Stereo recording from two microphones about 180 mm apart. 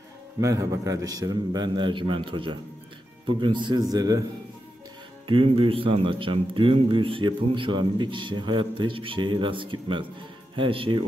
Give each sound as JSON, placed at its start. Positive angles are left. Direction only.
{"t": 0.4, "sound": "a man's voice", "side_deg": -15}
{"t": 5.2, "sound": "a man's voice", "side_deg": -30}